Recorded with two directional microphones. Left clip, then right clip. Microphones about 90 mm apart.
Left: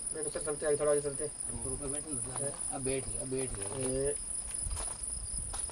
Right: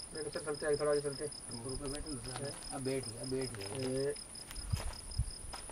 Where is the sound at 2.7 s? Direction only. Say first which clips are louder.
Left 1 dB; 25° left (ahead or behind).